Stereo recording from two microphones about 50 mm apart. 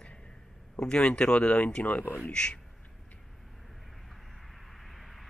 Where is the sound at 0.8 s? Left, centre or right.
Centre; by 2.2 s left.